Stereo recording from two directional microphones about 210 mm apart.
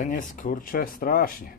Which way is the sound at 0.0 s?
40° left (ahead or behind).